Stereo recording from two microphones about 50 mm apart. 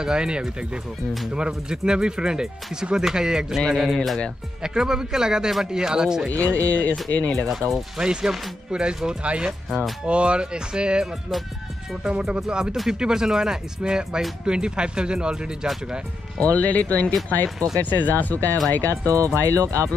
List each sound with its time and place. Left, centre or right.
0.0 s a man's voice: centre
4.6 s speech: centre
6.7 s speech: left
7.3 s a man's voice: centre
8.0 s speech: centre
16.3 s speech: left
19.0 s speech: right